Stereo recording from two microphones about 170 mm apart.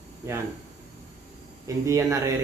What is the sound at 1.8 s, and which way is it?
Speech, 15° right (ahead or behind).